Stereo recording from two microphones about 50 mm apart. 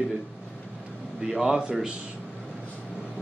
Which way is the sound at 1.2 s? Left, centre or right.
Centre.